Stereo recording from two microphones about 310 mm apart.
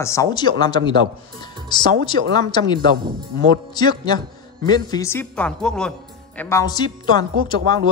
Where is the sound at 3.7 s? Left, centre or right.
Centre.